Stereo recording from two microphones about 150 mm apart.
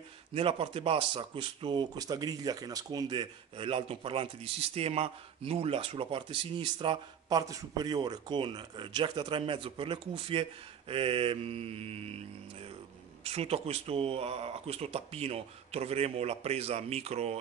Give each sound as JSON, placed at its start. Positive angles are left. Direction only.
{"t": 0.3, "sound": "speech", "side_deg": -40}
{"t": 13.2, "sound": "speech", "side_deg": -40}